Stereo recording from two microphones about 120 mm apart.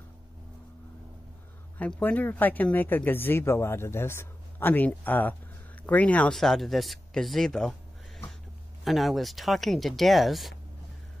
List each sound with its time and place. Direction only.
1.8 s speech: 15° left (ahead or behind)
8.8 s speech: centre (ahead or behind)